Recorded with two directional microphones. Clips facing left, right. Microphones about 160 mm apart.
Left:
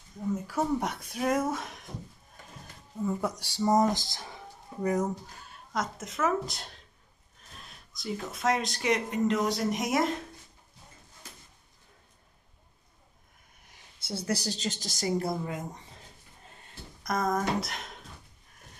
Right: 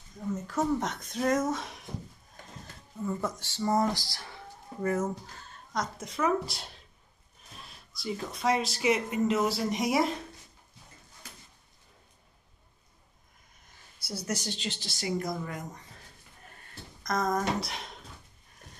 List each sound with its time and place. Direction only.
0.5 s speech: 10° left (ahead or behind)
3.1 s speech: 10° left (ahead or behind)
13.9 s a woman's voice: 25° left (ahead or behind); by 15.1 s 40° left (ahead or behind)
15.1 s speech: 25° left (ahead or behind)
17.0 s speech: 5° left (ahead or behind)